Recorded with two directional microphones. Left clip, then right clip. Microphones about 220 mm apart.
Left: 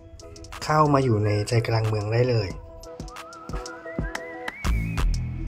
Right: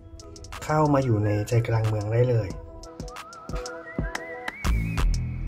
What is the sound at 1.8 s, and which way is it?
Speech, centre (ahead or behind).